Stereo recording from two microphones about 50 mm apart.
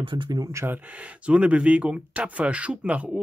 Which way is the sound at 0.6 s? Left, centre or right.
Right.